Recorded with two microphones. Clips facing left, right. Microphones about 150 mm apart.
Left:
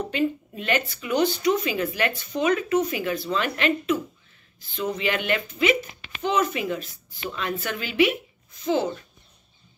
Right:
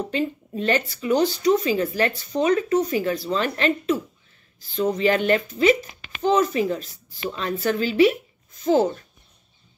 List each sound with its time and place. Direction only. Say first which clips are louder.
0.1 s speech: even; 35° right (ahead or behind)